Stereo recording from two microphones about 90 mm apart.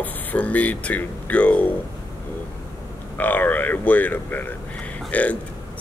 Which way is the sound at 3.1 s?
20° left (ahead or behind).